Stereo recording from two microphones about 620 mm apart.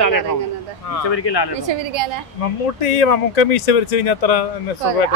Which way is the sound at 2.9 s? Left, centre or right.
Left.